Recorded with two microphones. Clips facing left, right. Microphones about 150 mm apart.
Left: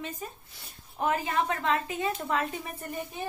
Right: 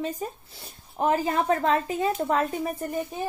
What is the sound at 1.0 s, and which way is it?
Speech, 35° right (ahead or behind).